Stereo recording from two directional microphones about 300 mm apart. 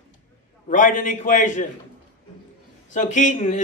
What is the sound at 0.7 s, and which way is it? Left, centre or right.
Speech, left.